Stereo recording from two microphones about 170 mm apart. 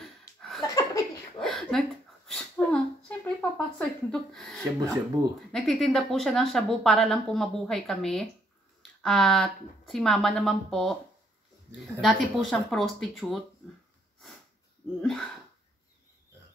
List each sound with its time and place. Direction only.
0.0 s laughter: centre (ahead or behind)
0.6 s laughter: 20° left (ahead or behind)
1.4 s a sound: centre (ahead or behind)
5.2 s speech: 10° right (ahead or behind)
5.5 s speech: centre (ahead or behind)
12.0 s speech: centre (ahead or behind)
15.0 s speech: centre (ahead or behind)